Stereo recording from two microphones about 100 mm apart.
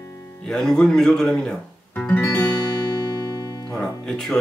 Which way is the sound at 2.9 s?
40° left (ahead or behind).